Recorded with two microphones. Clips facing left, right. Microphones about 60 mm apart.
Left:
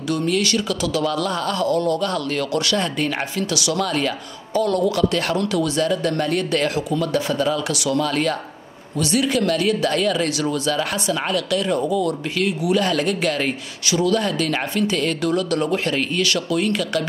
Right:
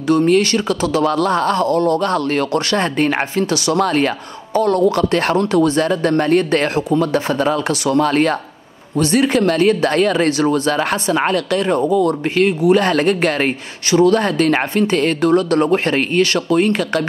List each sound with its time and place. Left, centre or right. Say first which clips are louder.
0.1 s speech: right 7 dB; right